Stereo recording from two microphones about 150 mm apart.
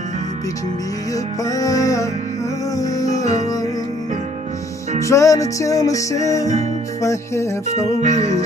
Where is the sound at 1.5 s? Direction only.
25° left (ahead or behind).